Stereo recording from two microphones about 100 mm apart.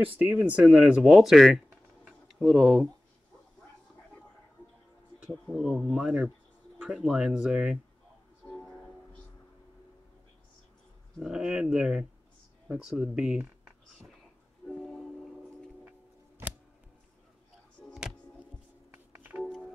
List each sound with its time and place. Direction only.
0.0 s speech: 15° right (ahead or behind)
2.0 s a sound: centre (ahead or behind)
5.5 s speech: 5° right (ahead or behind)
8.5 s music: 10° left (ahead or behind)
11.1 s speech: 5° right (ahead or behind)
14.7 s music: centre (ahead or behind)
19.1 s music: 20° right (ahead or behind)